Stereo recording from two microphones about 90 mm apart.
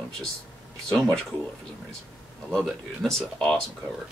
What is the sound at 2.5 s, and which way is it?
Speech, 5° left (ahead or behind).